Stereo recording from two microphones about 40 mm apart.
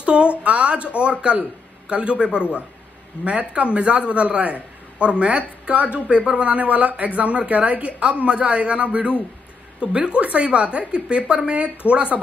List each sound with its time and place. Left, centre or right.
0.0 s a woman's voice: right